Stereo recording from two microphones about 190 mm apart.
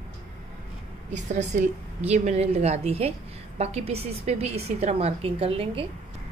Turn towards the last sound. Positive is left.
turn(degrees=-30)  # may be behind; listen again after turning